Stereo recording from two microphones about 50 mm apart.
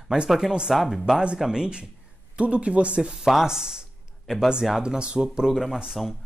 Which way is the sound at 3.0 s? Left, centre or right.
Centre.